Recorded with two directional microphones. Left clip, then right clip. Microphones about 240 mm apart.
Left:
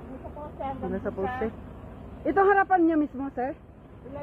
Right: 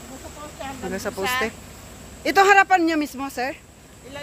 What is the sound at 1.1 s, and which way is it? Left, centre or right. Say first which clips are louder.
Speech: right 4 dB; right.